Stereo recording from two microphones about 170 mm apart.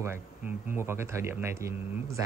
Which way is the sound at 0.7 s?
15° right (ahead or behind).